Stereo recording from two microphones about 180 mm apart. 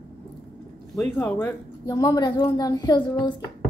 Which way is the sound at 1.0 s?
5° left (ahead or behind).